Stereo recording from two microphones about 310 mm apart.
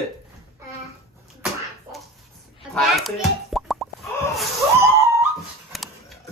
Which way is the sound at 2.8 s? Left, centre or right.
Centre.